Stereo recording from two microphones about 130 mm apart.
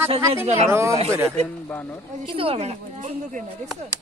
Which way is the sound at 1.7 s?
15° left (ahead or behind).